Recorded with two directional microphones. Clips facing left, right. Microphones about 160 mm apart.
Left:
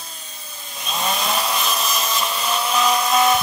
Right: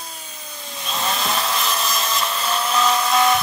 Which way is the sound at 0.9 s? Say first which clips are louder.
Left 1 dB; 15° left (ahead or behind).